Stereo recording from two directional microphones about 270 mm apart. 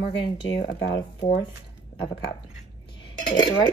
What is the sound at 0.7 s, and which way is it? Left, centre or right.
Speech, left.